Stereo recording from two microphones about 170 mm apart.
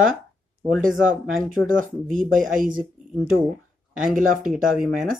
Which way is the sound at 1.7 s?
50° right (ahead or behind).